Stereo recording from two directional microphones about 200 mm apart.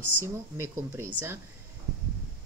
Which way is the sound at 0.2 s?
10° right (ahead or behind).